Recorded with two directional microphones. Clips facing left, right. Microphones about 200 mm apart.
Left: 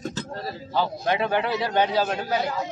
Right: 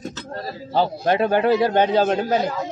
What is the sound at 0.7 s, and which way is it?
A man's voice, 50° right (ahead or behind).